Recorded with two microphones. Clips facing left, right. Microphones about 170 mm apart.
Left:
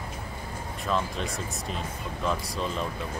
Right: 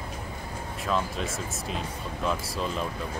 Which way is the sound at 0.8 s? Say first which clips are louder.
Even; centre (ahead or behind).